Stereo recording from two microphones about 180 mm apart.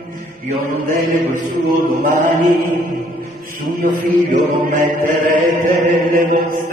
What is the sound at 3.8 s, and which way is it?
Chant, 45° right (ahead or behind).